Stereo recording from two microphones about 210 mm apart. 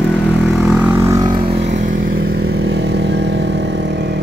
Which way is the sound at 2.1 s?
55° right (ahead or behind).